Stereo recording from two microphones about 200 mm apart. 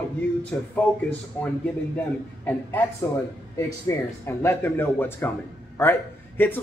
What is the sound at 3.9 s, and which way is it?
Speech, 15° left (ahead or behind).